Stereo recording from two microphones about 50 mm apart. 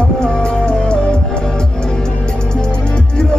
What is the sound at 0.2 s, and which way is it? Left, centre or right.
Music, centre.